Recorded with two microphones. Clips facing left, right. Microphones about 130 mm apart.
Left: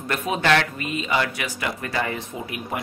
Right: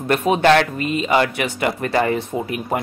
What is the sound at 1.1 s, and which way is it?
Speech, 55° right (ahead or behind).